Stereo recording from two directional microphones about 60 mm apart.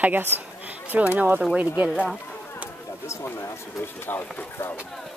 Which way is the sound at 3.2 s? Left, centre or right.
Left.